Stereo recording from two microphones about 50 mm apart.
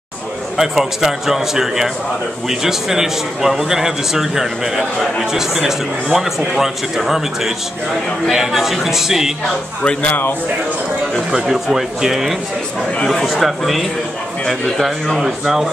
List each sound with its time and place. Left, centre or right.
0.6 s a man's voice: centre
10.0 s speech: left
11.3 s speech: centre
13.0 s a man's voice: centre